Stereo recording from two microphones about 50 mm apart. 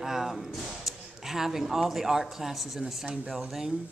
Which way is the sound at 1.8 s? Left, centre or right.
Centre.